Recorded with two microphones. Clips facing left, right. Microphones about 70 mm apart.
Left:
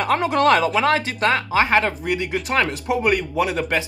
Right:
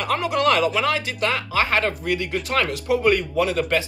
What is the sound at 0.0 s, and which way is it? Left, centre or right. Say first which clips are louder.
Speech: left 3 dB; left.